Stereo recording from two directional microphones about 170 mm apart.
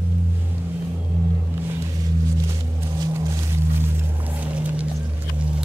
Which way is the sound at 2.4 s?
15° right (ahead or behind).